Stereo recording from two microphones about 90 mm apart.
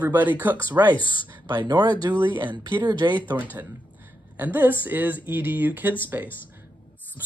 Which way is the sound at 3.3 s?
35° right (ahead or behind).